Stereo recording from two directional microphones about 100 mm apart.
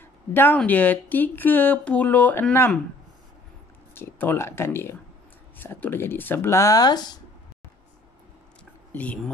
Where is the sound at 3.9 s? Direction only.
20° left (ahead or behind); by 7.2 s 45° left (ahead or behind).